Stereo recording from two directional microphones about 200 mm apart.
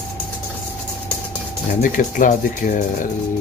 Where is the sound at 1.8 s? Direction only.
40° left (ahead or behind).